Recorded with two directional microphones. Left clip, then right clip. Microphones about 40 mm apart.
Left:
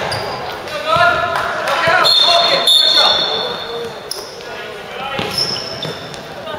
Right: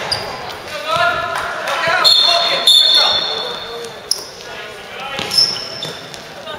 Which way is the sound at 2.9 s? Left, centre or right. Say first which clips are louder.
Left 1 dB; centre.